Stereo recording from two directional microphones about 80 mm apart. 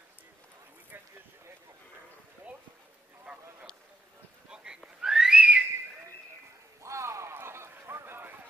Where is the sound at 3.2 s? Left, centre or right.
Centre.